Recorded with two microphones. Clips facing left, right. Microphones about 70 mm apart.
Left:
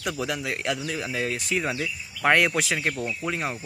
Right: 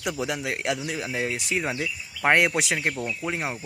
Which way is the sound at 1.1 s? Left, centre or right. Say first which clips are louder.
Even; right.